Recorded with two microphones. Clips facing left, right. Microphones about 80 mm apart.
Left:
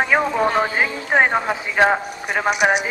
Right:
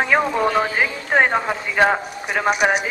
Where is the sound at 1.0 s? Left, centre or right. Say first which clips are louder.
Even; centre.